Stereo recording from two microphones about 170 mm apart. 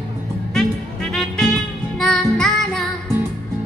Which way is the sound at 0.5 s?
Centre (ahead or behind).